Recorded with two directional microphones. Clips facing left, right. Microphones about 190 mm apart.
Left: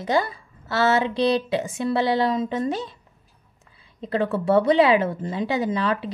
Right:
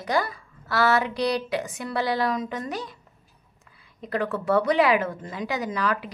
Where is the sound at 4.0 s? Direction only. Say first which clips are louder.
Left 4 dB; 25° left (ahead or behind).